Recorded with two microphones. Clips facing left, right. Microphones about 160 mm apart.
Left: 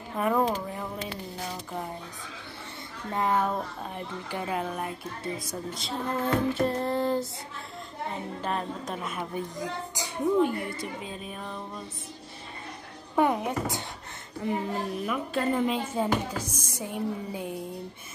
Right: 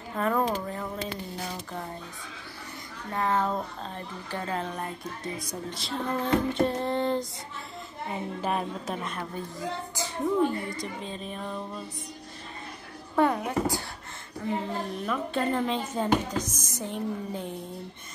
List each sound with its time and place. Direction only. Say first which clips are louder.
0.2 s speech: left 1 dB; 15° left (ahead or behind)
3.1 s speech: left 1 dB; 15° left (ahead or behind)
8.4 s a woman's voice: right 2 dB; 10° right (ahead or behind)
9.0 s speech: left 2 dB; 10° left (ahead or behind)
13.1 s a woman's voice: even; 15° left (ahead or behind)